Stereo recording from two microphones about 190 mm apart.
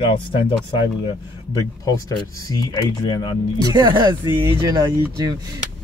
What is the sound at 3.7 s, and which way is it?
Speech, 25° right (ahead or behind).